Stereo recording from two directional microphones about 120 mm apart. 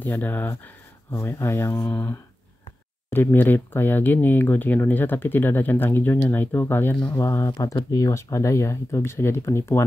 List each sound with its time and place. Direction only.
0.0 s speech: 15° left (ahead or behind)